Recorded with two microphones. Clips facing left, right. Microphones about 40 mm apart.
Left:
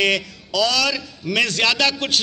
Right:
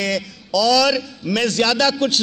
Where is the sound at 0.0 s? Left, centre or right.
Left.